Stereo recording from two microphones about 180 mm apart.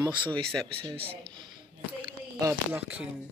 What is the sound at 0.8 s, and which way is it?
Speech, 30° right (ahead or behind).